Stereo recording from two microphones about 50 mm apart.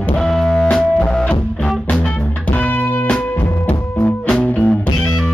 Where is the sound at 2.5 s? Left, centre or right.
Left.